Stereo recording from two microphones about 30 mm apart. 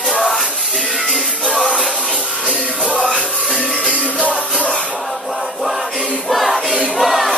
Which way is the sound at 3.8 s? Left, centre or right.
Right.